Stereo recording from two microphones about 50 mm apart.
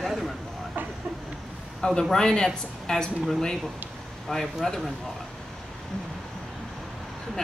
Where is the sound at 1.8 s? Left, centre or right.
Centre.